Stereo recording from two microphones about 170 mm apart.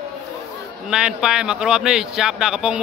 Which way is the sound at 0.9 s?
5° right (ahead or behind).